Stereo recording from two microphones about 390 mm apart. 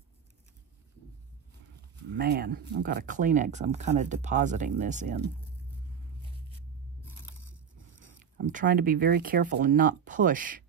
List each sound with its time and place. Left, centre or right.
2.0 s speech: right
7.1 s biting: centre
8.2 s speech: centre